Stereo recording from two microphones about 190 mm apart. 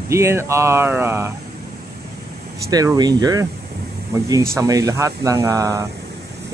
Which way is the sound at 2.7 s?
20° right (ahead or behind).